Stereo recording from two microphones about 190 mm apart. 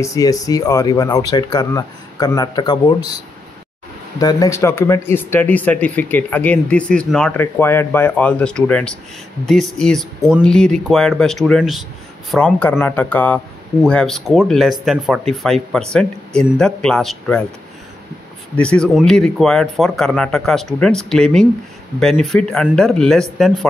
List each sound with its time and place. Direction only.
0.0 s speech: 15° left (ahead or behind)
4.2 s speech: 20° left (ahead or behind); by 17.5 s centre (ahead or behind)
18.6 s speech: 5° left (ahead or behind)